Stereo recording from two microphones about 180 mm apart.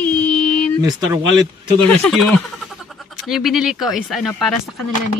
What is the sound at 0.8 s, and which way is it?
Speech, 20° right (ahead or behind).